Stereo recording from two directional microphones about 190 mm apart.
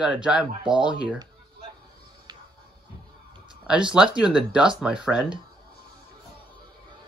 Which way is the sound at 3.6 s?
5° right (ahead or behind).